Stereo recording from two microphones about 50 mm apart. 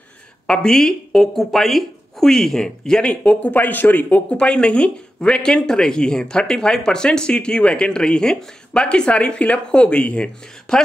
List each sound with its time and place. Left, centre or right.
0.5 s speech: centre
1.3 s speech: centre; by 4.2 s left
4.3 s speech: centre